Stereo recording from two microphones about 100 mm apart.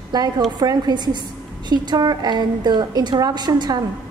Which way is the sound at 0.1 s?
40° right (ahead or behind).